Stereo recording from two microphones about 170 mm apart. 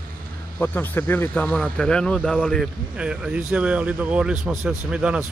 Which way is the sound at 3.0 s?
5° right (ahead or behind).